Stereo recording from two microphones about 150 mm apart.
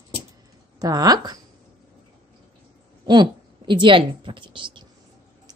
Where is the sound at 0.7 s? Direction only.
25° right (ahead or behind).